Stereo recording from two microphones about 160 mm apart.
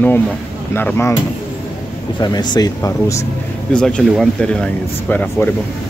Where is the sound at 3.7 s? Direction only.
5° left (ahead or behind).